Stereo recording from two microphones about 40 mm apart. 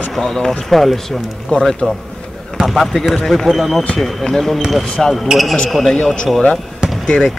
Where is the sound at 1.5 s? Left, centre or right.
Left.